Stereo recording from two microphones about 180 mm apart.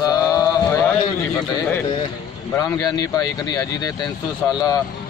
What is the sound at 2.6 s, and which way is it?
A man's voice, 20° left (ahead or behind).